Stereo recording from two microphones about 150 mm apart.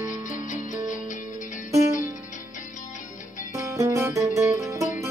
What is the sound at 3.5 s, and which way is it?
Music, 20° right (ahead or behind).